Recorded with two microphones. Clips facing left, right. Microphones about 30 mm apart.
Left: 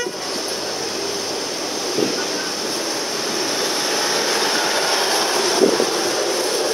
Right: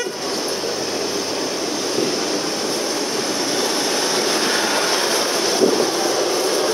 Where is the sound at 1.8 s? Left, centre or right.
Centre.